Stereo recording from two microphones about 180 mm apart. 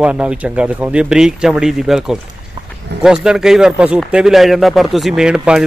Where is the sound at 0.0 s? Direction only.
5° right (ahead or behind).